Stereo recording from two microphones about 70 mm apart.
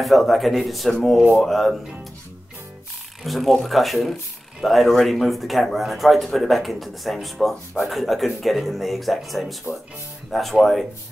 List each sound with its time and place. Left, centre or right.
0.0 s speech: centre
3.3 s speech: centre